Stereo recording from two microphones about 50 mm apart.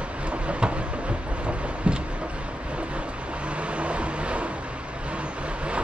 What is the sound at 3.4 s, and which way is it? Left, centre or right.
Vehicle, right.